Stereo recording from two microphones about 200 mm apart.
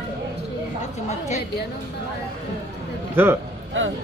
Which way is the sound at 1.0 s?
35° left (ahead or behind).